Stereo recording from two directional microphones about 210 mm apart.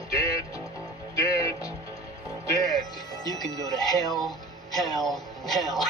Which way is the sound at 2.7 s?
20° left (ahead or behind).